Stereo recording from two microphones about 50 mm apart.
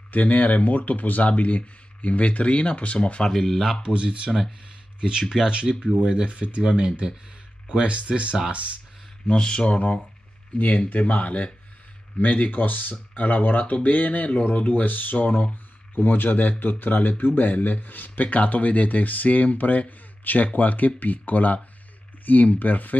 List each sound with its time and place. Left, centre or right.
0.1 s speech: left
3.3 s speech: centre
3.8 s speech: right
9.3 s speech: centre; by 22.9 s left